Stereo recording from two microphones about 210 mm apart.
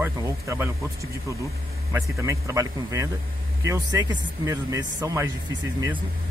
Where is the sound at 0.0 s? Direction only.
10° right (ahead or behind).